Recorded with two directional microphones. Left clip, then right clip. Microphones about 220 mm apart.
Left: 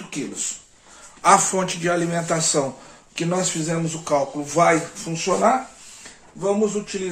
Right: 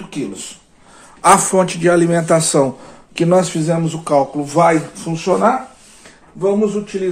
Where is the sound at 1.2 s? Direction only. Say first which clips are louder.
Right 5 dB; 45° right (ahead or behind).